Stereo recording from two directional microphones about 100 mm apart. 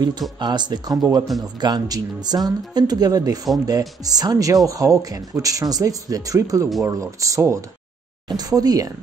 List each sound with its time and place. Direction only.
0.4 s speech: 45° right (ahead or behind)